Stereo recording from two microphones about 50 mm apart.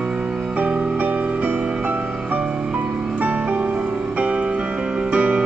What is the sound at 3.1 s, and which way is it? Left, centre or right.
Music, right.